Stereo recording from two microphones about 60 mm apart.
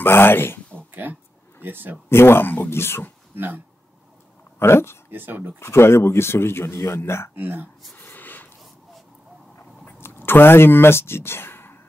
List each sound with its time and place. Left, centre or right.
0.0 s speech: left
0.7 s a sound: right
1.6 s speech: right
2.0 s speech: left
3.3 s speech: right
4.6 s a man's voice: left
5.1 s speech: right
5.6 s a man's voice: left
7.3 s speech: right
7.9 s a sound: left
9.9 s speech: left